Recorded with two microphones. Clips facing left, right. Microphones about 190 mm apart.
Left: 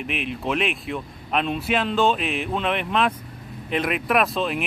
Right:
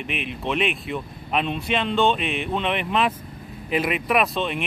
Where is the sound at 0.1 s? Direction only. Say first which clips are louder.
Left 1 dB; centre (ahead or behind).